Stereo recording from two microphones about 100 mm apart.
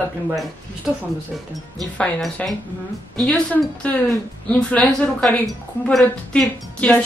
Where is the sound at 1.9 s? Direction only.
10° left (ahead or behind).